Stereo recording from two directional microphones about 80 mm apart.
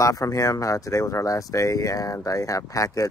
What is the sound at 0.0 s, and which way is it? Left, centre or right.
Speech, left.